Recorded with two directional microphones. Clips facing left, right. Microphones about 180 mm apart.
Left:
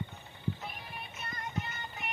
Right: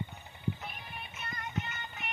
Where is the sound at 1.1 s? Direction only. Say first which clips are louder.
Even; 35° left (ahead or behind).